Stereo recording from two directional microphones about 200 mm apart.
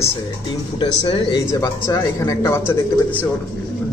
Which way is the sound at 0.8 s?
25° left (ahead or behind).